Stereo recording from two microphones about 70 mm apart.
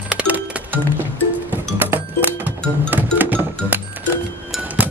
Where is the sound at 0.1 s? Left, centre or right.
Centre.